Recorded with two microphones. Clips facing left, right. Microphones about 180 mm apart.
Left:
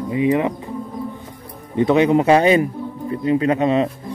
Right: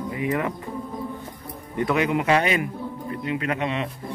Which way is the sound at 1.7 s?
25° left (ahead or behind).